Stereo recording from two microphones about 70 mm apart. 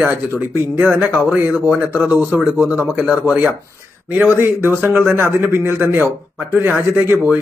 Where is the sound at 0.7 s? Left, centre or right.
Right.